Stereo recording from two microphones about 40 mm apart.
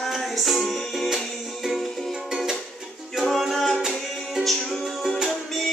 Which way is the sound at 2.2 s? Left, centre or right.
Centre.